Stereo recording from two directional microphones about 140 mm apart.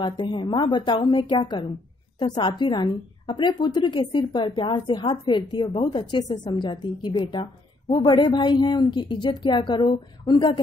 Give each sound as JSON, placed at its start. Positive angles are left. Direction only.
{"t": 0.0, "sound": "a woman's voice", "side_deg": 35}